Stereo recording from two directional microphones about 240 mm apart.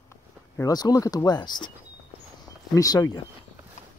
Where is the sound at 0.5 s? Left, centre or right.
Centre.